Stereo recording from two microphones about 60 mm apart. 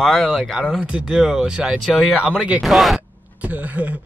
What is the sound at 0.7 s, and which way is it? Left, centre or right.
Speech, centre.